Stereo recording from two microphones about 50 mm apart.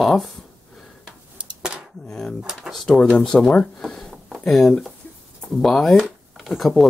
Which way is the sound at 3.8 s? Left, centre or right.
Centre.